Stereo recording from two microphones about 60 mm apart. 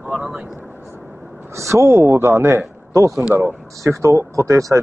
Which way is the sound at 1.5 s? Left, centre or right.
Right.